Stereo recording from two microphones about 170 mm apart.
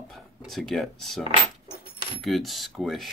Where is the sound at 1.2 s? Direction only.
25° right (ahead or behind).